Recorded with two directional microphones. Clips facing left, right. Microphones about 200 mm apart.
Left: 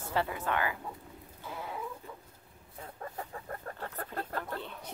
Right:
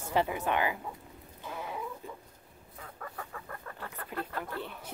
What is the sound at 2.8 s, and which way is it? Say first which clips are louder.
Chicken: left 2 dB; 25° left (ahead or behind).